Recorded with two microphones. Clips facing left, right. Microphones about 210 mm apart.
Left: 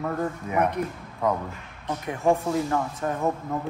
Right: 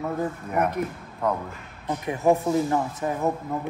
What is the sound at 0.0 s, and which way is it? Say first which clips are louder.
A man's voice: even; 5° right (ahead or behind).